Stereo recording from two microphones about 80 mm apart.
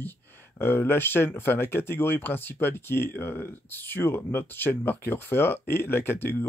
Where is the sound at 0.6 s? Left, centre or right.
Left.